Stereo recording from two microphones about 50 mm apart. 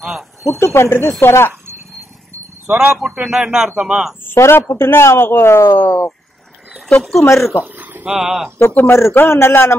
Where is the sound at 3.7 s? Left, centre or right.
Right.